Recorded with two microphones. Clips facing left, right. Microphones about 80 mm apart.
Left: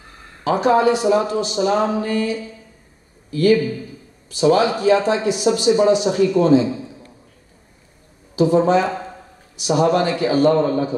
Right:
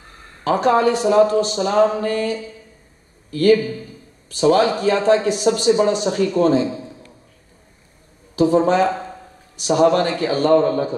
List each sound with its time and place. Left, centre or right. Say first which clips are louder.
0.4 s a man's voice: even; right
8.4 s speech: even; right